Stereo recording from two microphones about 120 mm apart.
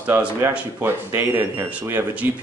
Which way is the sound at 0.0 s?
15° right (ahead or behind).